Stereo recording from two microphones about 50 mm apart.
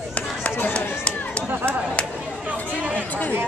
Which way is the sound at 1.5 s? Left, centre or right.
Right.